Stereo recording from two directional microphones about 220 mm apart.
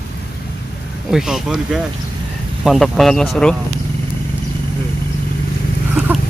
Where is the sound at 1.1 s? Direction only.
Centre (ahead or behind).